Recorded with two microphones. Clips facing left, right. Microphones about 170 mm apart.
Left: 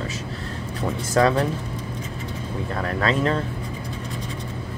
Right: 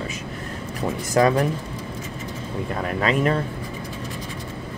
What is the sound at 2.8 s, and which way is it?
Speech, 15° right (ahead or behind).